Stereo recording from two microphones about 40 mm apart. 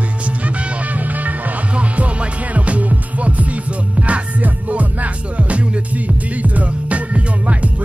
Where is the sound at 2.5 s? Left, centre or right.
Right.